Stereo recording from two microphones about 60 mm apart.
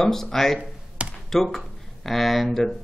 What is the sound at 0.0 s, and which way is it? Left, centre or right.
Speech, centre.